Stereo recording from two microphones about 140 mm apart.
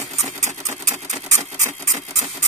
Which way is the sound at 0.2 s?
55° right (ahead or behind).